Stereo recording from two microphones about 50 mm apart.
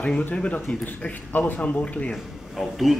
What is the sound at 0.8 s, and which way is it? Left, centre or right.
A man's voice, left.